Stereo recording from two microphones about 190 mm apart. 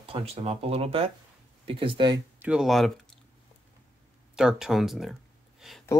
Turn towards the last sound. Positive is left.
turn(degrees=0)  # may be behind; listen again after turning